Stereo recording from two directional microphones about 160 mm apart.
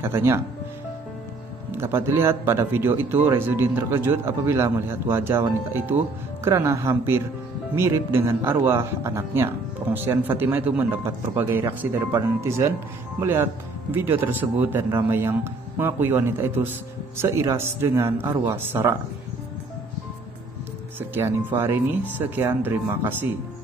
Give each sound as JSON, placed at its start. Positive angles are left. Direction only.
{"t": 0.0, "sound": "a man's voice", "side_deg": -15}
{"t": 1.7, "sound": "a man's voice", "side_deg": -15}
{"t": 21.1, "sound": "a man's voice", "side_deg": -15}